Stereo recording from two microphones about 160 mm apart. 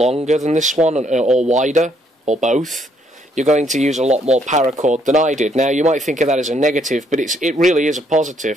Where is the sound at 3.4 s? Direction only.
50° right (ahead or behind).